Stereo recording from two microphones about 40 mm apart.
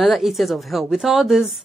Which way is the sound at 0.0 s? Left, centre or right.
Centre.